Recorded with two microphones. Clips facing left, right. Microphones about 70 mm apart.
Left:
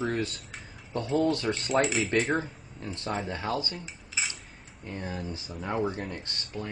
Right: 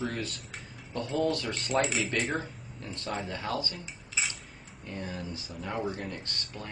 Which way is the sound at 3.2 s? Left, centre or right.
Left.